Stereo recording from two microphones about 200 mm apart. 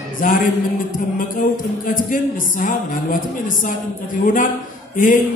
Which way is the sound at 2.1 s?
45° left (ahead or behind).